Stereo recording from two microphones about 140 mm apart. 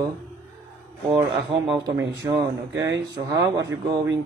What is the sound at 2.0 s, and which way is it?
Speech, 25° right (ahead or behind).